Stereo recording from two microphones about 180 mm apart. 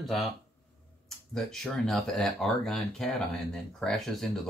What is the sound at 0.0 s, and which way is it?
Speech, centre (ahead or behind).